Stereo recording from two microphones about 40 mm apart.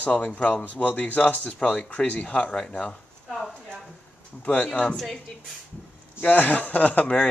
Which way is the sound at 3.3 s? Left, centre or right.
Centre.